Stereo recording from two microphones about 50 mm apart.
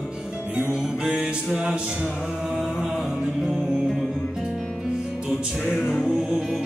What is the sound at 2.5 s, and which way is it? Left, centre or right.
Chant, centre.